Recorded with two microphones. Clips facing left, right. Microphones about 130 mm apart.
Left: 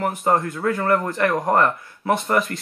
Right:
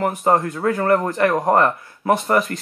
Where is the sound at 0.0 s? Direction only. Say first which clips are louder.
Right 2 dB; 25° right (ahead or behind).